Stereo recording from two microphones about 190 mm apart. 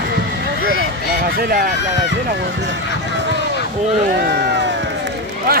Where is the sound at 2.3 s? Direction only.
60° right (ahead or behind).